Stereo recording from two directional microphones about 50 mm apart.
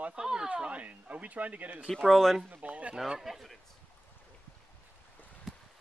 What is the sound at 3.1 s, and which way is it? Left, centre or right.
Speech, centre.